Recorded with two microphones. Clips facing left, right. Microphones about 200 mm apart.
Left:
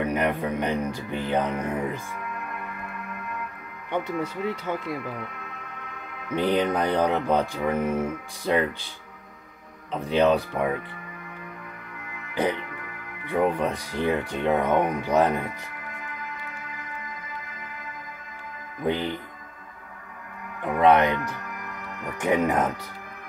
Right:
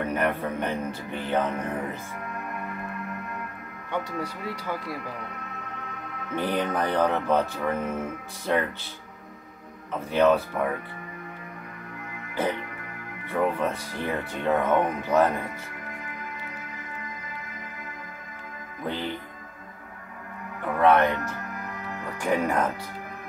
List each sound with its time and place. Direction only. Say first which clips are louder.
0.0 s speech: left 2 dB; 15° left (ahead or behind)
3.9 s speech: left 3 dB; 20° left (ahead or behind)
6.3 s speech: left 4 dB; 15° left (ahead or behind)
9.9 s speech: even; 15° left (ahead or behind)
13.3 s speech: left 2 dB; 15° left (ahead or behind)
18.9 s speech: left 5 dB; 15° left (ahead or behind)
20.8 s speech: left 1 dB; 15° left (ahead or behind)
22.2 s speech: left 2 dB; 20° left (ahead or behind)